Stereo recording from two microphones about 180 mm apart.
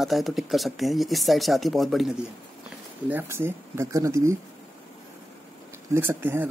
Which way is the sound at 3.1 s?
15° right (ahead or behind).